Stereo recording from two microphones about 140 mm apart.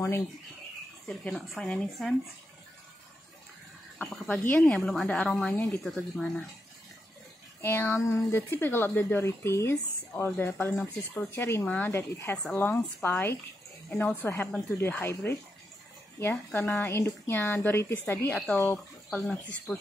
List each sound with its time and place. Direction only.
1.0 s speech: 5° left (ahead or behind)
4.0 s a woman's voice: 5° left (ahead or behind)
5.5 s a woman's voice: 15° left (ahead or behind)
5.9 s speech: centre (ahead or behind)
7.6 s a woman's voice: 15° left (ahead or behind)
19.7 s speech: 5° right (ahead or behind)